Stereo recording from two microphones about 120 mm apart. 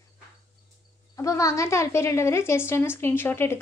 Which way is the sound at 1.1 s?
25° left (ahead or behind).